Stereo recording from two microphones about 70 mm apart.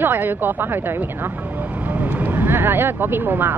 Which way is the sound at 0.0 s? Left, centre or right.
Right.